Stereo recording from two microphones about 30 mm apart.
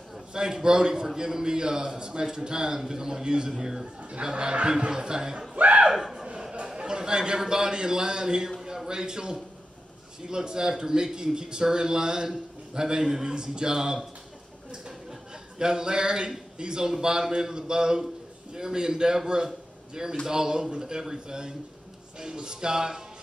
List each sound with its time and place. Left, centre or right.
0.3 s a man's voice: right
3.8 s a man's voice: right
5.6 s speech: right
5.9 s speech: centre
6.8 s a man's voice: right
13.3 s a man's voice: right
15.6 s a man's voice: right